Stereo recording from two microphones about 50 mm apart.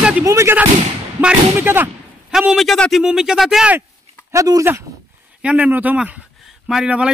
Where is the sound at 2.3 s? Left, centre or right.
Centre.